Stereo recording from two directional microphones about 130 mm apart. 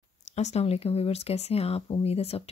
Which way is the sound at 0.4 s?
55° left (ahead or behind).